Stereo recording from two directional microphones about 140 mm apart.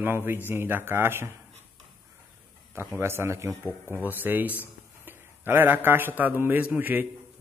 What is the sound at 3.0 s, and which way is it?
A man's voice, 20° right (ahead or behind).